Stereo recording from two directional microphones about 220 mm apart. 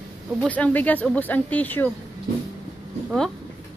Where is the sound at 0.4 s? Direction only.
5° left (ahead or behind).